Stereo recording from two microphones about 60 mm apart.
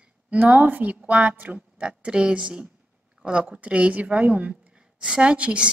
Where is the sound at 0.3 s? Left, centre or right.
Right.